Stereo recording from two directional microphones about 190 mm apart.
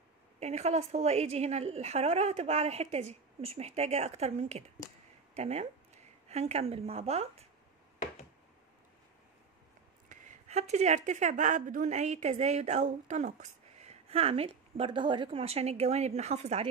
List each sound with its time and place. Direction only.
0.4 s speech: 35° right (ahead or behind)
10.0 s speech: 40° right (ahead or behind)